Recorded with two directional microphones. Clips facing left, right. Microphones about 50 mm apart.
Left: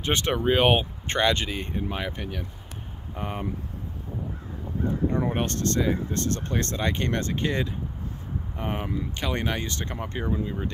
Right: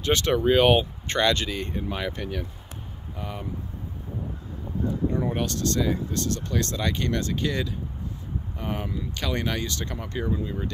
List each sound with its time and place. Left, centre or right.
0.0 s speech: left
3.2 s speech: left
5.1 s speech: left; by 10.7 s centre